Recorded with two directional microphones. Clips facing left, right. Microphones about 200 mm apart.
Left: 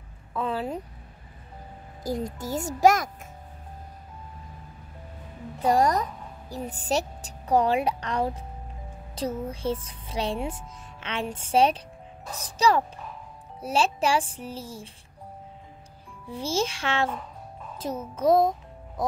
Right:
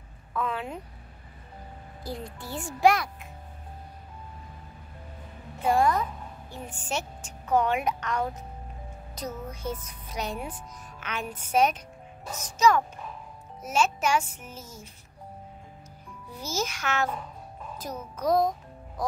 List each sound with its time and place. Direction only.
0.3 s a woman's voice: 30° left (ahead or behind)
2.0 s a child's voice: 40° left (ahead or behind)
5.6 s a woman's voice: 40° left (ahead or behind)
16.3 s speech: 30° left (ahead or behind)
18.1 s speech: 25° left (ahead or behind)